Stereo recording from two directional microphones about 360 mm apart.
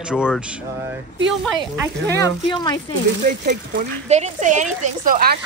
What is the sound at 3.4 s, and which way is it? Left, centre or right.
Speech, right.